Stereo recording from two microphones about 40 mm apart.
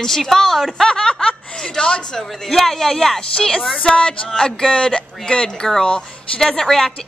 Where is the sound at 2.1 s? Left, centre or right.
Centre; by 5.4 s left.